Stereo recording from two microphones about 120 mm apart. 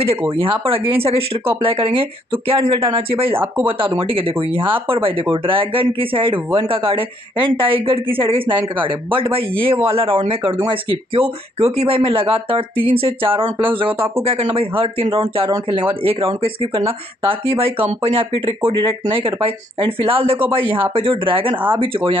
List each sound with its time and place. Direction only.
0.3 s speech: 50° right (ahead or behind)
13.9 s speech: 20° right (ahead or behind)
14.2 s speech: 50° right (ahead or behind)